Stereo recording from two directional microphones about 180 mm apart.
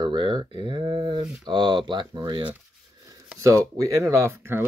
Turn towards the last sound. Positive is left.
turn(degrees=-15)  # may be behind; listen again after turning